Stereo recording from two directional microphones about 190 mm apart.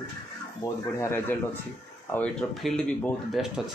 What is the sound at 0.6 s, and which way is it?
Speech, 15° left (ahead or behind).